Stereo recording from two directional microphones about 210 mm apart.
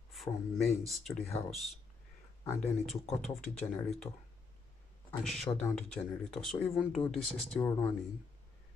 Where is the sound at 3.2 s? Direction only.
Centre (ahead or behind).